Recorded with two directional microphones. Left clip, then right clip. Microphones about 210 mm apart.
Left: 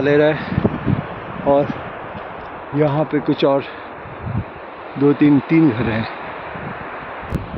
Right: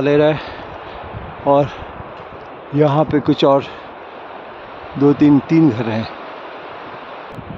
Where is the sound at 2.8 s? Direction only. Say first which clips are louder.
Right 3 dB; 35° right (ahead or behind).